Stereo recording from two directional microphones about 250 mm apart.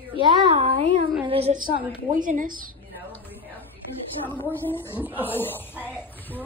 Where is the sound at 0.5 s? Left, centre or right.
Right.